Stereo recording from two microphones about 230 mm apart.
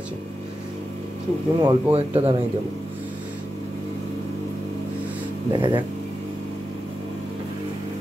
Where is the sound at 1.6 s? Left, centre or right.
Right.